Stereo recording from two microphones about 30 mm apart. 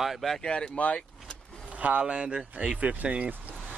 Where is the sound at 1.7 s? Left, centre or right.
Right.